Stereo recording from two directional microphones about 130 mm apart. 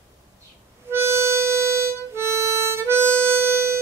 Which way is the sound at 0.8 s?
20° right (ahead or behind).